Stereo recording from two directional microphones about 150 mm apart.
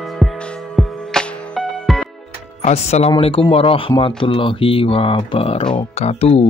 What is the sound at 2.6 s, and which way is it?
Speech, 45° left (ahead or behind).